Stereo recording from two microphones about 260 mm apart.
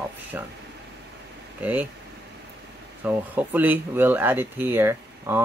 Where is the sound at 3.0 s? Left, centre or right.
Centre.